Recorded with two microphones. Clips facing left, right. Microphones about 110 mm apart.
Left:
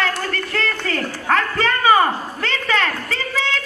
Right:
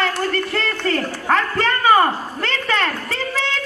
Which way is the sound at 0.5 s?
Centre (ahead or behind).